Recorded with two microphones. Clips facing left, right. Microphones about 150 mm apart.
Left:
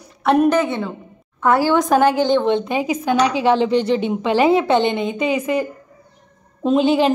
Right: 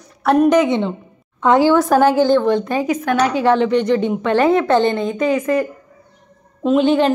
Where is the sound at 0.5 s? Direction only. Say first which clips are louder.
Right 4 dB; 15° right (ahead or behind).